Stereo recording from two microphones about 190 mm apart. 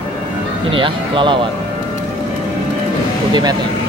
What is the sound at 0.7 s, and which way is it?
Speech, 25° right (ahead or behind).